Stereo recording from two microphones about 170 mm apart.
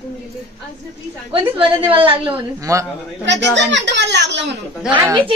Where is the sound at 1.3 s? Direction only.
30° right (ahead or behind).